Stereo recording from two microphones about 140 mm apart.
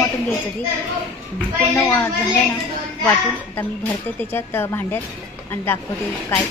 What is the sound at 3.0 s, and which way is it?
A woman's voice, 20° left (ahead or behind).